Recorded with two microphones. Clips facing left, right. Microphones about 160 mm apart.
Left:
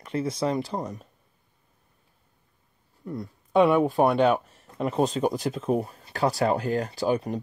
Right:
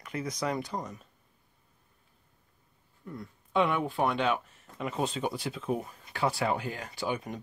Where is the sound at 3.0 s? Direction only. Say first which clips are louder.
Left 8 dB; 35° left (ahead or behind).